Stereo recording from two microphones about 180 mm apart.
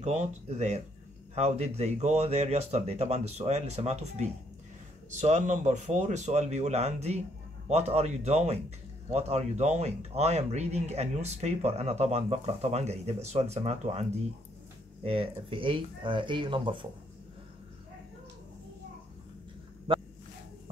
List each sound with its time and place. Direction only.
0.0 s a man's voice: 40° right (ahead or behind)
15.0 s speech: 30° right (ahead or behind)